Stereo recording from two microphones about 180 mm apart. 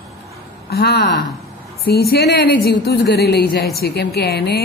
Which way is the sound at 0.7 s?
65° left (ahead or behind).